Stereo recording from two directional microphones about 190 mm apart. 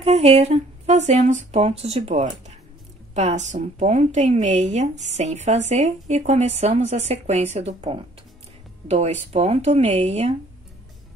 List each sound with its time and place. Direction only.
0.0 s speech: 30° right (ahead or behind)